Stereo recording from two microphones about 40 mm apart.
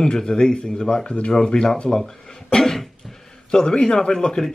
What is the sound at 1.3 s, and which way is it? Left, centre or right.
Speech, left.